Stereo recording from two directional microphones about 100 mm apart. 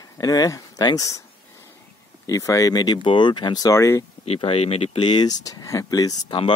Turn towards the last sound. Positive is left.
turn(degrees=40)  # may be behind; listen again after turning